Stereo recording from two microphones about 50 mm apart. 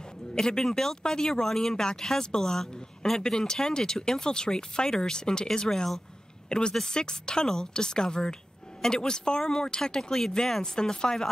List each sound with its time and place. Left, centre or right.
0.3 s speech: centre